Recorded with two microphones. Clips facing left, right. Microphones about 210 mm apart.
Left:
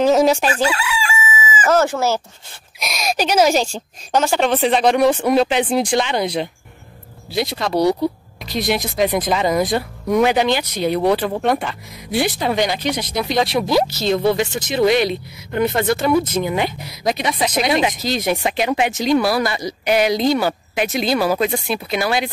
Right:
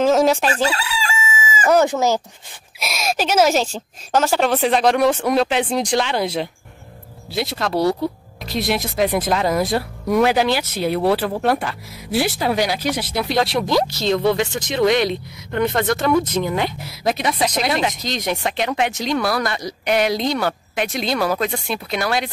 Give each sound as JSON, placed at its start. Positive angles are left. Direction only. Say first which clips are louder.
{"t": 0.0, "sound": "chicken", "louder": "left 1 dB", "side_deg": 0}
{"t": 0.5, "sound": "chicken", "louder": "left 1 dB", "side_deg": -35}
{"t": 1.7, "sound": "speech", "louder": "right 1 dB", "side_deg": -15}
{"t": 2.8, "sound": "speech", "louder": "left 1 dB", "side_deg": -5}